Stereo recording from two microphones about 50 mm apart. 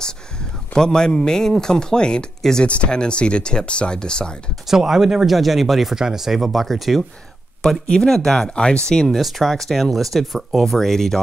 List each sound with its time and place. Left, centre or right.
0.7 s speech: centre
4.6 s speech: centre
7.8 s speech: centre
9.1 s speech: centre